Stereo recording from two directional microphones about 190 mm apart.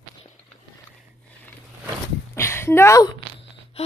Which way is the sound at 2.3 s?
15° left (ahead or behind).